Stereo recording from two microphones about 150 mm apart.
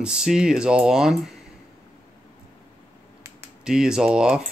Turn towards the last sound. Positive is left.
turn(degrees=-5)  # may be behind; listen again after turning